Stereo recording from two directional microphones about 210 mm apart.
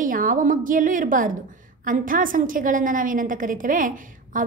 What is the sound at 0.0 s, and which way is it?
A woman's voice, 40° right (ahead or behind).